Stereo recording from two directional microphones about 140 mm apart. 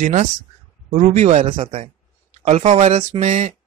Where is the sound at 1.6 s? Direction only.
45° right (ahead or behind).